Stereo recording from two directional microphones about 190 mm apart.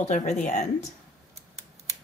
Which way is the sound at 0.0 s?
40° left (ahead or behind).